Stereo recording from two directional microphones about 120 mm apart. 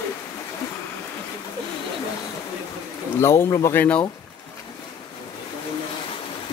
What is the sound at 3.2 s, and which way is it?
Speech, 20° left (ahead or behind).